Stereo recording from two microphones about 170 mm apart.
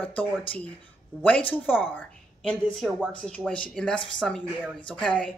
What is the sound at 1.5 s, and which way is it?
Speech, 10° left (ahead or behind).